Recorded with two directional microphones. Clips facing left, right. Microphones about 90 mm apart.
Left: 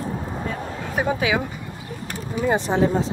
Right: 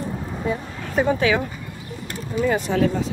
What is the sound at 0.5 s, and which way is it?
Speech, 10° right (ahead or behind).